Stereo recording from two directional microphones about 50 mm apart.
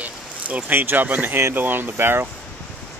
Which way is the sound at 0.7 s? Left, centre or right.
Right.